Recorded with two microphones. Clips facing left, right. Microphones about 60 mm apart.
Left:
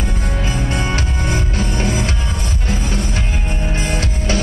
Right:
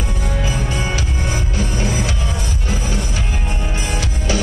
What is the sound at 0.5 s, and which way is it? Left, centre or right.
Music, left.